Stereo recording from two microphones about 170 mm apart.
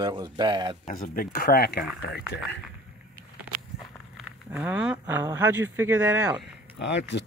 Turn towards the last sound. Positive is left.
turn(degrees=85)